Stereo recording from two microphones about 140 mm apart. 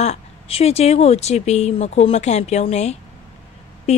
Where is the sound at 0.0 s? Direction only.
45° left (ahead or behind).